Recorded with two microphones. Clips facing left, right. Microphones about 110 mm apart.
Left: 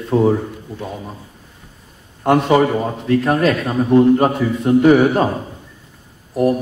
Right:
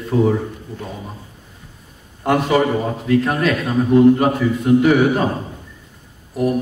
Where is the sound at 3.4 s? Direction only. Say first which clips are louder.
Left 2 dB; 35° left (ahead or behind).